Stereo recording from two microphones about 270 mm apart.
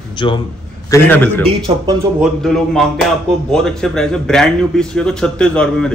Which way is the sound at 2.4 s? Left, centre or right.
Centre.